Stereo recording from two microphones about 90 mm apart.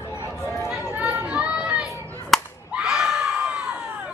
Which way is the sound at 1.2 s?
10° right (ahead or behind).